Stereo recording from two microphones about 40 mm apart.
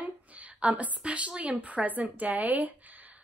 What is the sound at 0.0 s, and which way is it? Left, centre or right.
A woman's voice, right.